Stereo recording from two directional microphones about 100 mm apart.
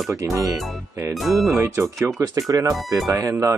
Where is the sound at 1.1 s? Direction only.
Centre (ahead or behind).